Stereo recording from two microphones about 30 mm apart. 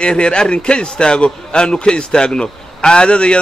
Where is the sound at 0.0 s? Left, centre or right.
Left.